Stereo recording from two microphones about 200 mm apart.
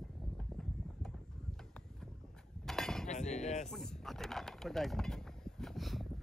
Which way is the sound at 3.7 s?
Centre (ahead or behind).